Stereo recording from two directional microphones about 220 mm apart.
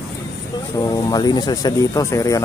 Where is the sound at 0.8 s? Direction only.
15° left (ahead or behind).